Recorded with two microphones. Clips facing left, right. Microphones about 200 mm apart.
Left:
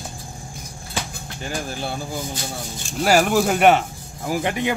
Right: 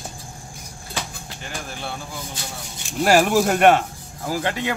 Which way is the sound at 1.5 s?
35° left (ahead or behind).